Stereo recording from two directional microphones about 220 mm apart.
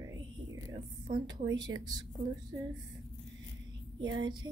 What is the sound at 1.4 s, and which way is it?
Speech, 15° right (ahead or behind).